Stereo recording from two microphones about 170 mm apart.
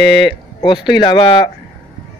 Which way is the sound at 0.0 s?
30° left (ahead or behind).